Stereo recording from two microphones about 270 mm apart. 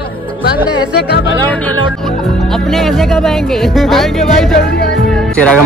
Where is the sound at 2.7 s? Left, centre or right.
Centre.